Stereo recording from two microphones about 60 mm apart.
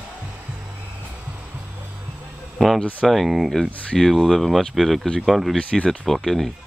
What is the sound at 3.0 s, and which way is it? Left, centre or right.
Speech, centre.